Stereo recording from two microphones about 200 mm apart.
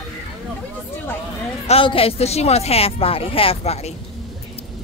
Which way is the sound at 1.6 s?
30° left (ahead or behind).